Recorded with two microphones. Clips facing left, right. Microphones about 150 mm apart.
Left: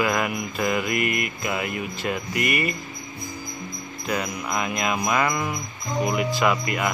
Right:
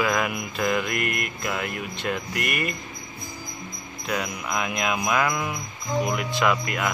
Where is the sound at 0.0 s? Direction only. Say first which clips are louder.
Left 1 dB; centre (ahead or behind).